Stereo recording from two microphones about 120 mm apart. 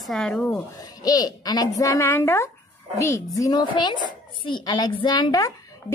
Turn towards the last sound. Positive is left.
turn(degrees=30)  # may be behind; listen again after turning